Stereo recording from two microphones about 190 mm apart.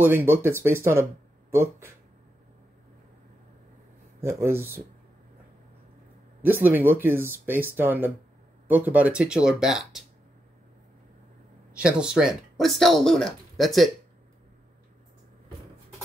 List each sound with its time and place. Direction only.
0.0 s speech: 10° right (ahead or behind)
4.2 s speech: 15° right (ahead or behind)
6.4 s speech: 10° right (ahead or behind)
11.7 s speech: 5° right (ahead or behind)